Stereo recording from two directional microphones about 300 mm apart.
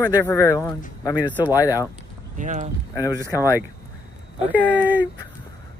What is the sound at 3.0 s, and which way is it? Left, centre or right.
Speech, centre.